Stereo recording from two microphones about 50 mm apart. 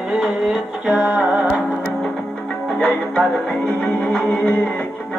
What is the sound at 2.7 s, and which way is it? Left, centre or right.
Music, centre.